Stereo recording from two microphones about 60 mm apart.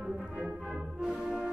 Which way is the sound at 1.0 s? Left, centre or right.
Centre.